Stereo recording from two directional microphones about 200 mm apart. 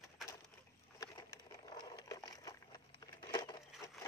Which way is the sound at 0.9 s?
20° left (ahead or behind).